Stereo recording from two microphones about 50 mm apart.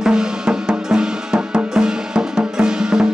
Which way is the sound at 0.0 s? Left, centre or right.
Centre.